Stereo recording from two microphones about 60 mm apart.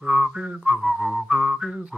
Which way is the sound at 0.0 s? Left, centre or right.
Right.